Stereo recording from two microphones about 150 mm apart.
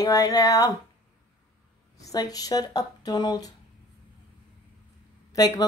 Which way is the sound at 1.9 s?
25° left (ahead or behind).